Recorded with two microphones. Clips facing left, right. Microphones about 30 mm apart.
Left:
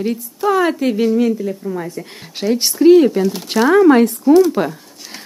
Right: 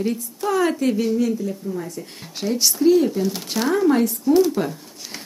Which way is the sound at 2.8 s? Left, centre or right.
Left.